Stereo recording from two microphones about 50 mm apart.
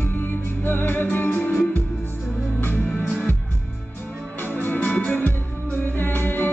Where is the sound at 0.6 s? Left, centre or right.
Left.